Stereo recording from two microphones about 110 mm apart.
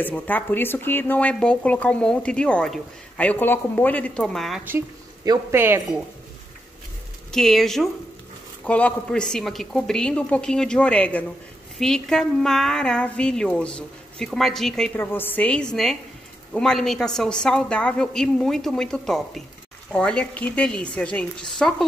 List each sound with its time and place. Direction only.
0.0 s speech: 15° left (ahead or behind)
5.5 s speech: 20° right (ahead or behind)
7.2 s a woman's voice: 5° left (ahead or behind)
15.0 s a woman's voice: 20° left (ahead or behind); by 21.8 s 5° left (ahead or behind)